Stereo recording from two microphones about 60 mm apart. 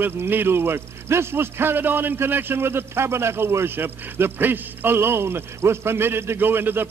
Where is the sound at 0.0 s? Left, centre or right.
Right.